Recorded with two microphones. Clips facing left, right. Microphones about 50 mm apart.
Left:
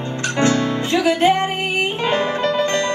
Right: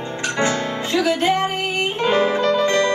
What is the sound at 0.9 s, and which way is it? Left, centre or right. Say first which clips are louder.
Music: left 2 dB; left.